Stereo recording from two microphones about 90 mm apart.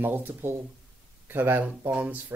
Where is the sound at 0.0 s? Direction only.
25° right (ahead or behind).